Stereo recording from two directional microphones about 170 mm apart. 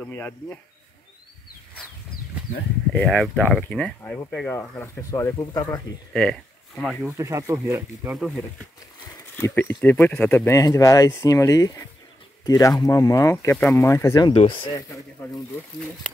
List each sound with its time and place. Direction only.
0.1 s speech: 10° left (ahead or behind)
2.9 s speech: 5° left (ahead or behind)
6.1 s speech: 5° left (ahead or behind)
7.1 s speech: 15° right (ahead or behind)
8.2 s speech: 5° left (ahead or behind)
14.3 s speech: 30° left (ahead or behind)